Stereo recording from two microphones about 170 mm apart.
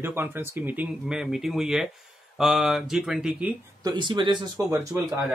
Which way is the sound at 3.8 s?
25° right (ahead or behind).